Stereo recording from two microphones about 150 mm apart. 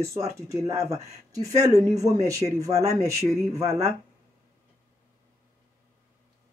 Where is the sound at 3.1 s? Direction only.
45° right (ahead or behind).